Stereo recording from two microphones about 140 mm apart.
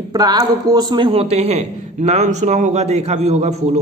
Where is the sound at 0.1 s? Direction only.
30° right (ahead or behind).